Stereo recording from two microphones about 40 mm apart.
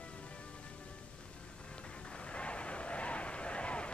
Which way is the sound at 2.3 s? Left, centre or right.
Left.